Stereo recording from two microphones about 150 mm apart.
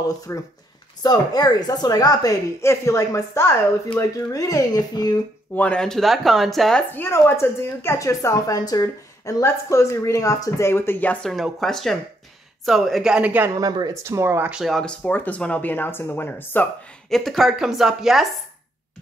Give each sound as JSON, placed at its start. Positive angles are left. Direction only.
{"t": 0.3, "sound": "a woman's voice", "side_deg": 20}
{"t": 5.5, "sound": "speech", "side_deg": 10}
{"t": 6.9, "sound": "a woman's voice", "side_deg": 15}
{"t": 13.6, "sound": "speech", "side_deg": -25}
{"t": 14.5, "sound": "speech", "side_deg": 0}
{"t": 17.1, "sound": "speech", "side_deg": 0}